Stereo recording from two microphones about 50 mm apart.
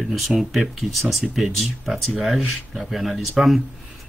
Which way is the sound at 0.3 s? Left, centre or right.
Centre.